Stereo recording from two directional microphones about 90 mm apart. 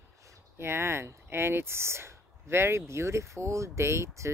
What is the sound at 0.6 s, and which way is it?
Speech, 25° right (ahead or behind).